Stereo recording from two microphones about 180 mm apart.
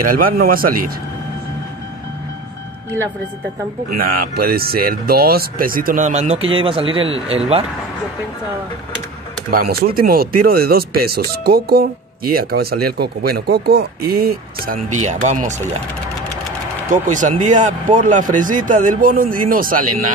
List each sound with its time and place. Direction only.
0.0 s speech: 50° right (ahead or behind)
4.0 s speech: 55° right (ahead or behind); by 7.6 s 35° right (ahead or behind)
9.5 s speech: 55° right (ahead or behind)
16.9 s speech: 45° right (ahead or behind)